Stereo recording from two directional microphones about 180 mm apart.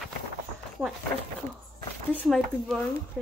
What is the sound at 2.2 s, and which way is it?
Speech, centre (ahead or behind).